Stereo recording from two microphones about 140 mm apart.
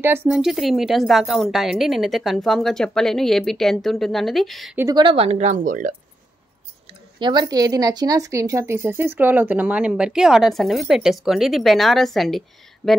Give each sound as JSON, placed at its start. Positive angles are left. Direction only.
{"t": 0.0, "sound": "speech", "side_deg": -15}
{"t": 0.4, "sound": "a woman's voice", "side_deg": 0}
{"t": 4.9, "sound": "speech", "side_deg": -40}
{"t": 6.9, "sound": "speech", "side_deg": -35}